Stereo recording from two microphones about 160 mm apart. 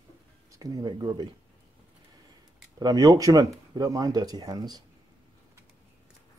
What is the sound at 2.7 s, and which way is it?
Speech, 25° right (ahead or behind).